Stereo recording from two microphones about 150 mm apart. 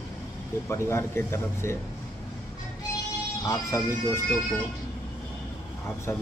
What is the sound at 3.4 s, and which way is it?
Speech, 20° left (ahead or behind).